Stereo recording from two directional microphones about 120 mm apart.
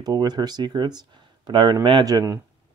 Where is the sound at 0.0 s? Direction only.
35° right (ahead or behind).